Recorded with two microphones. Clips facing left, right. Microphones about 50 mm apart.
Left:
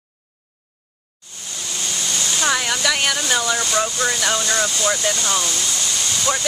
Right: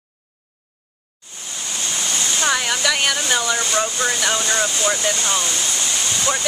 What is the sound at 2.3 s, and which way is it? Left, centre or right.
Speech, centre.